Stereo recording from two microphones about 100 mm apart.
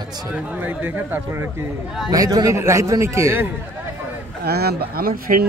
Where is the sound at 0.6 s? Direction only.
20° right (ahead or behind).